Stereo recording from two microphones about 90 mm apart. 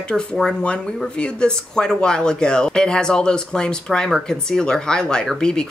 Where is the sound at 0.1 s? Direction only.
5° left (ahead or behind).